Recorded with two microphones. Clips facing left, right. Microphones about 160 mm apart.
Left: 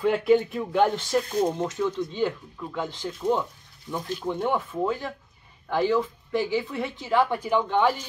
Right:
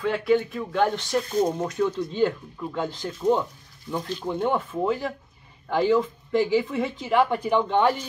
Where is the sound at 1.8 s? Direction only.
5° right (ahead or behind).